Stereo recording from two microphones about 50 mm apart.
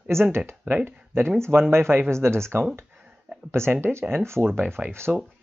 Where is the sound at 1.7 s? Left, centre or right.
Right.